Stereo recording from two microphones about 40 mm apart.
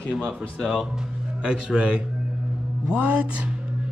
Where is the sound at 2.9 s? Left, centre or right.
Right.